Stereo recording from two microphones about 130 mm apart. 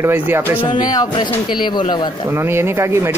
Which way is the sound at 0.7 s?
30° left (ahead or behind).